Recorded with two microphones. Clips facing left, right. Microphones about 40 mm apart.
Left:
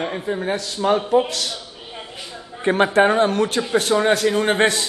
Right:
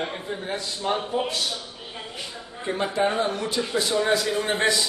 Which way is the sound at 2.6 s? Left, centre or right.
Left.